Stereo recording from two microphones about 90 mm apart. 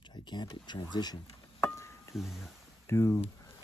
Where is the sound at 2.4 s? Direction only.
30° left (ahead or behind).